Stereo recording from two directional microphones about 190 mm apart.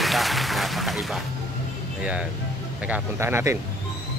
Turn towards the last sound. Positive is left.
turn(degrees=-15)  # may be behind; listen again after turning